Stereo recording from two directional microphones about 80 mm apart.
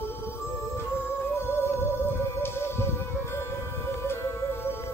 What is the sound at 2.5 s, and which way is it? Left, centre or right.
Music, left.